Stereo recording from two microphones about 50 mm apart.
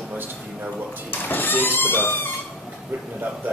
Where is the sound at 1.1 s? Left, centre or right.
Left.